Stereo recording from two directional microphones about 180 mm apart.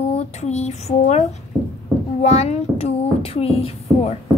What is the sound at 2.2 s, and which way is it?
A child's voice, 35° left (ahead or behind).